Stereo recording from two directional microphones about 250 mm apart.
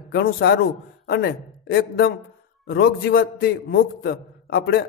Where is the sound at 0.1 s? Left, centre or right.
Left.